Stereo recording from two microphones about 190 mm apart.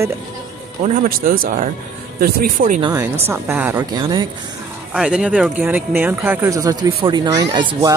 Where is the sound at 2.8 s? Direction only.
15° right (ahead or behind).